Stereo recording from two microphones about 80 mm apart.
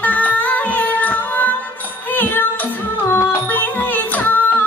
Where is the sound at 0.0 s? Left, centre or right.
Left.